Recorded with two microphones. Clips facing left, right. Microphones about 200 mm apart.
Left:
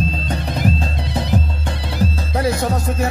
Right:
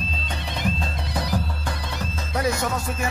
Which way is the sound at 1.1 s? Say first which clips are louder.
Left 5 dB; 25° left (ahead or behind).